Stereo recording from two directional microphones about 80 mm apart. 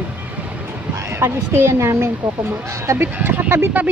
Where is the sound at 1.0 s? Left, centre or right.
Right.